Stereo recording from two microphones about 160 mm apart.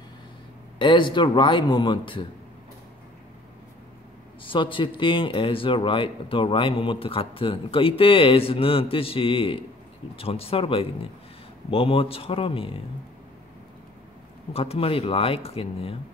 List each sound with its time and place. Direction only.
0.7 s speech: 30° left (ahead or behind)
4.5 s speech: 30° left (ahead or behind)
14.5 s speech: 35° left (ahead or behind)